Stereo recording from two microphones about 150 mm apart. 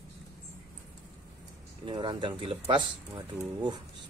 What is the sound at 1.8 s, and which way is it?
Speech, 35° right (ahead or behind).